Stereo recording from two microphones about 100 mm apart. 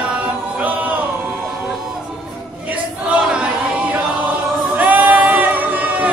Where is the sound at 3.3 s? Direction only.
10° right (ahead or behind).